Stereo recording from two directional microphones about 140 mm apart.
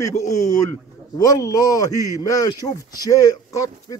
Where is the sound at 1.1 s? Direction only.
25° left (ahead or behind).